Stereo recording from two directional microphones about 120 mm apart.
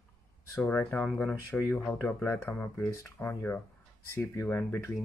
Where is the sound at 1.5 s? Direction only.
20° left (ahead or behind).